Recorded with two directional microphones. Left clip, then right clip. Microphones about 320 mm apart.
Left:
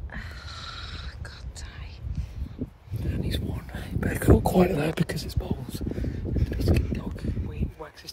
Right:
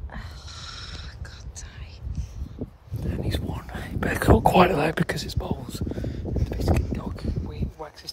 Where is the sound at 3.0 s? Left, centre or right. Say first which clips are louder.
Right 2 dB; centre.